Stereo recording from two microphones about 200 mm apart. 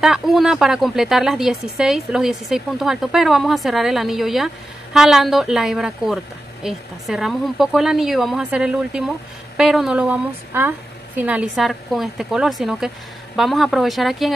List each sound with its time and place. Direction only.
0.0 s speech: centre (ahead or behind)